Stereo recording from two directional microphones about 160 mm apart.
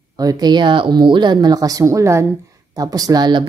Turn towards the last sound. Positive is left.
turn(degrees=-25)  # may be behind; listen again after turning